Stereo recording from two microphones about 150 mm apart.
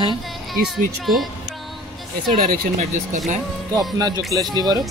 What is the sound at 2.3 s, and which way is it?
Speech, 65° right (ahead or behind).